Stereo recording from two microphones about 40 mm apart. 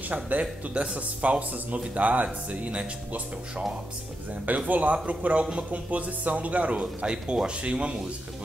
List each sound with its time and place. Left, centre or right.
0.1 s speech: right
4.5 s speech: right